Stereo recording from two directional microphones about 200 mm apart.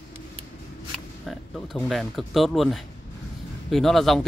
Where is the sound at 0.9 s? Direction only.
5° left (ahead or behind).